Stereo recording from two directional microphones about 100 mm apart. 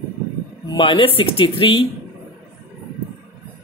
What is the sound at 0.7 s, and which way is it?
A woman's voice, 55° left (ahead or behind).